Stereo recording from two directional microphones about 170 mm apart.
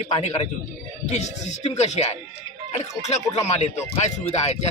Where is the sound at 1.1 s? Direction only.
45° left (ahead or behind).